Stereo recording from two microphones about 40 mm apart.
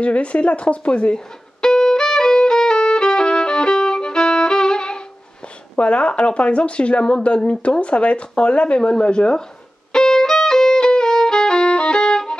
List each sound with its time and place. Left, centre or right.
0.0 s speech: left
1.1 s violin: centre
5.8 s speech: left
9.9 s violin: centre